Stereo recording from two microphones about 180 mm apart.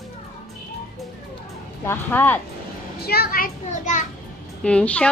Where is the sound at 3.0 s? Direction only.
60° left (ahead or behind).